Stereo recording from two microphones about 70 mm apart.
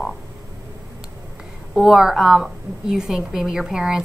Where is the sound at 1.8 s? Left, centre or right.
Centre.